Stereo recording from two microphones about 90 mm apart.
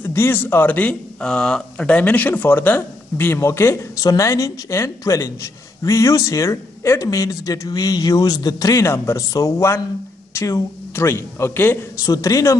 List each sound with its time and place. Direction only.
0.0 s a man's voice: 25° left (ahead or behind)
12.0 s a man's voice: 40° left (ahead or behind)